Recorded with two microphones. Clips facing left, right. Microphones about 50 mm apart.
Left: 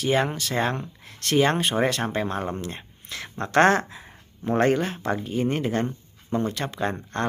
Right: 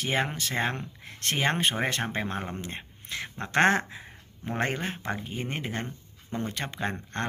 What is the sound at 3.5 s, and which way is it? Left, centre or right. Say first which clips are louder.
Speech: left 4 dB; centre.